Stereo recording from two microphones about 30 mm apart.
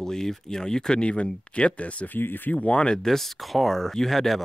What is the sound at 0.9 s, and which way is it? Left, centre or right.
Speech, left.